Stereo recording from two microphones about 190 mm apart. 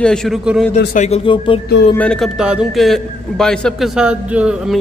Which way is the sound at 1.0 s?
30° left (ahead or behind).